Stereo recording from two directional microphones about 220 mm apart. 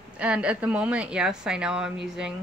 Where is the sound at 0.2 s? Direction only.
5° right (ahead or behind).